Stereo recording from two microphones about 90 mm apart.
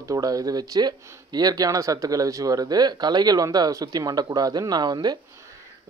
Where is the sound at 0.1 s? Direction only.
40° right (ahead or behind).